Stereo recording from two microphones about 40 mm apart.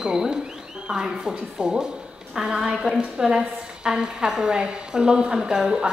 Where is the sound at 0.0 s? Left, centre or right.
Centre.